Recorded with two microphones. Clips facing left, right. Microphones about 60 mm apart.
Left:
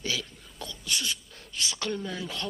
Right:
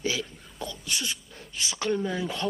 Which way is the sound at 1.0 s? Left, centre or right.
Centre.